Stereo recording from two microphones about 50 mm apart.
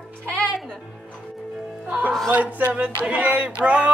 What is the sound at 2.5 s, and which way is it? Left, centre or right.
Speech, right.